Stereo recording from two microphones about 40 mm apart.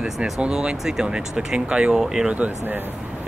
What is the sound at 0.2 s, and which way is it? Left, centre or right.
Speech, right.